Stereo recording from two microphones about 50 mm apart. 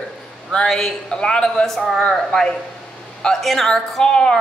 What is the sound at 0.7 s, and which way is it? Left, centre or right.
A man's voice, centre.